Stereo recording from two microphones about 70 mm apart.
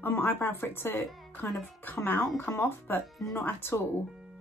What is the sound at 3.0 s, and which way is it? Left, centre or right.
Speech, centre.